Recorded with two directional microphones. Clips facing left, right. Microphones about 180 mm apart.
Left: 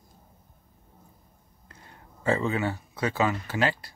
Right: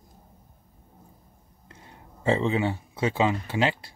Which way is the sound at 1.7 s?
20° right (ahead or behind).